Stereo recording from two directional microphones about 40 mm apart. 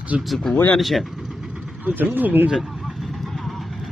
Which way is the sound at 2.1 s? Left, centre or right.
Right.